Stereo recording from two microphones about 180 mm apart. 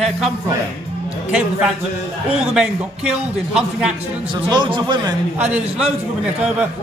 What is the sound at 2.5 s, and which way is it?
Speech, 5° right (ahead or behind).